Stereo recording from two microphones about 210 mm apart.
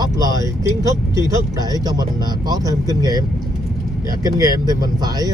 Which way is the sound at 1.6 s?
20° right (ahead or behind).